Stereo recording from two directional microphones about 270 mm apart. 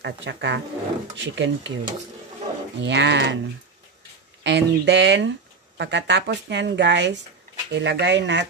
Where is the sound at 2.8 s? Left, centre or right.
Right.